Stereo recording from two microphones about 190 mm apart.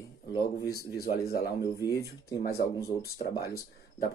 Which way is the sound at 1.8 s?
20° left (ahead or behind).